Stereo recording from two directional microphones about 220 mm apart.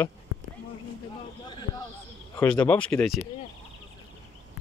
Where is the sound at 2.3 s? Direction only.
5° left (ahead or behind).